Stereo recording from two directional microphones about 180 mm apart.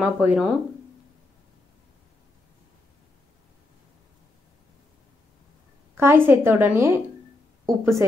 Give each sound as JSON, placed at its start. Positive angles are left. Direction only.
{"t": 0.0, "sound": "a woman's voice", "side_deg": -5}
{"t": 5.9, "sound": "a woman's voice", "side_deg": -15}